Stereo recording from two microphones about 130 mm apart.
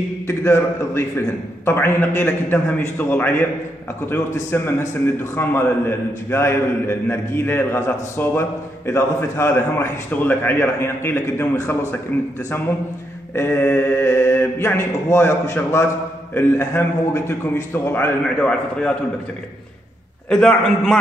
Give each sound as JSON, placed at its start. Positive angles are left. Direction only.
{"t": 0.3, "sound": "a man's voice", "side_deg": 20}
{"t": 13.3, "sound": "a man's voice", "side_deg": 15}
{"t": 18.4, "sound": "a man's voice", "side_deg": 5}
{"t": 20.2, "sound": "a man's voice", "side_deg": 5}